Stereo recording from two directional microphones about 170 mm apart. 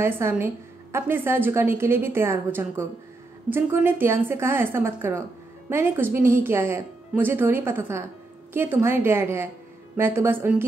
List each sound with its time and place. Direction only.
0.0 s a woman's voice: 15° right (ahead or behind)